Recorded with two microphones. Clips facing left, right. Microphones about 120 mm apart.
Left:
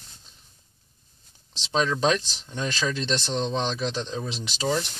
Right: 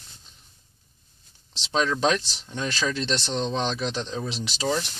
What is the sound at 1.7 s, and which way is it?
Speech, centre (ahead or behind).